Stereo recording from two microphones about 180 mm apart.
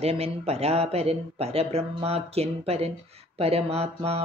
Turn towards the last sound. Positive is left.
turn(degrees=-35)  # may be behind; listen again after turning